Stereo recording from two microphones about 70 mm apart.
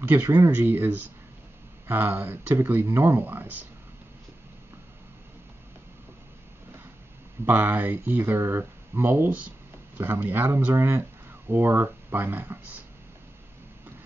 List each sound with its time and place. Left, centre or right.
0.5 s speech: right
7.4 s speech: right